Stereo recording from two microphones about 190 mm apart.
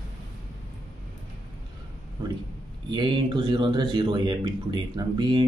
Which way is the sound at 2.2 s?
20° right (ahead or behind).